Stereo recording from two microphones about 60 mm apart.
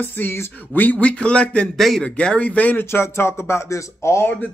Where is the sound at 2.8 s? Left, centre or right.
Left.